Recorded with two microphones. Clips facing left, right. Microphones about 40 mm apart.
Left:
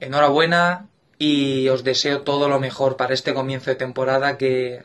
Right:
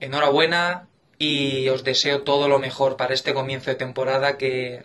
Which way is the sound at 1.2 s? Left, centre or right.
Right.